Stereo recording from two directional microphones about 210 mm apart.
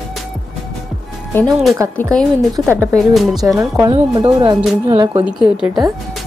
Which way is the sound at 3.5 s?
15° right (ahead or behind).